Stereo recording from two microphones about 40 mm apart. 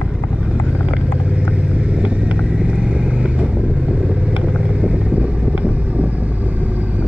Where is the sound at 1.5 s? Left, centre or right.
Right.